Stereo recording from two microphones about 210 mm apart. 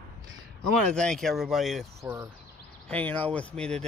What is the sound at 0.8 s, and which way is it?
Speech, centre (ahead or behind).